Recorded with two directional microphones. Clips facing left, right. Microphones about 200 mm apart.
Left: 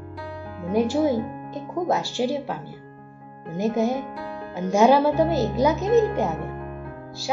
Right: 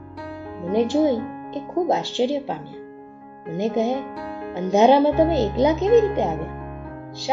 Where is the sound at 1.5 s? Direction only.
20° right (ahead or behind).